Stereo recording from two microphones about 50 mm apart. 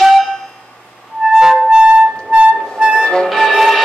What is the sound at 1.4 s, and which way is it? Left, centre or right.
Music, centre.